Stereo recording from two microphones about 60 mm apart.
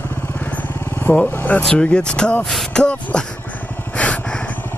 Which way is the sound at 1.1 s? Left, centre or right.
Left.